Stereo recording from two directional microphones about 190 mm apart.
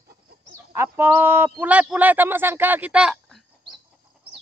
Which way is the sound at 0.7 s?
10° right (ahead or behind).